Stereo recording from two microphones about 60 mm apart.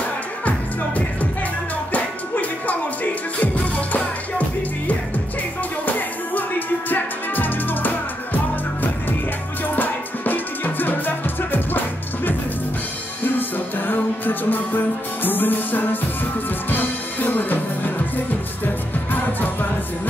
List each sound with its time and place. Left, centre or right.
1.9 s music: left
5.9 s music: left
9.8 s music: left
13.2 s music: left